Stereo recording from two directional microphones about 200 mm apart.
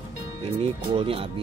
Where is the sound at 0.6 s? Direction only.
25° right (ahead or behind).